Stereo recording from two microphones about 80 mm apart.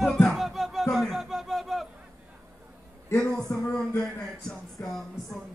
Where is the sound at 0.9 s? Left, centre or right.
Centre.